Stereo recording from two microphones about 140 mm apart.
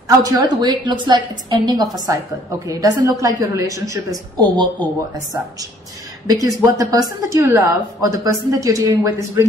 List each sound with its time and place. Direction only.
0.2 s a woman's voice: 30° right (ahead or behind)
6.2 s a woman's voice: 25° right (ahead or behind)